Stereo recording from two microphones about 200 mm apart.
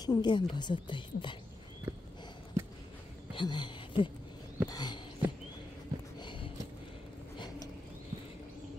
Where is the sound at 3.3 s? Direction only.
20° left (ahead or behind).